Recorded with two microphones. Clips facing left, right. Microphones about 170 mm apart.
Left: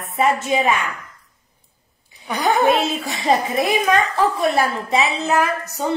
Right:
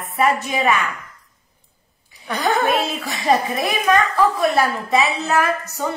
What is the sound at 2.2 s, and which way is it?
A woman's voice, 15° left (ahead or behind).